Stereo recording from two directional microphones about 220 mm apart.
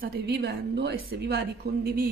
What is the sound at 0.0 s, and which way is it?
Speech, 45° right (ahead or behind).